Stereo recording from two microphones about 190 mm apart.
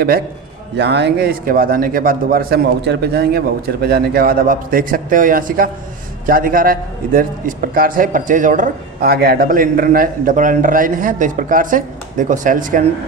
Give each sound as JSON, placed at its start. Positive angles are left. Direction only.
{"t": 0.7, "sound": "a man's voice", "side_deg": -65}